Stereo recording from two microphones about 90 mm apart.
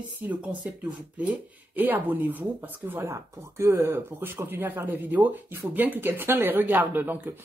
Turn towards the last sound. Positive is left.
turn(degrees=-25)  # may be behind; listen again after turning